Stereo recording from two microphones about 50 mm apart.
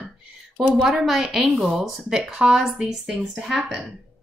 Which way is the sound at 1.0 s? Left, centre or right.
Centre.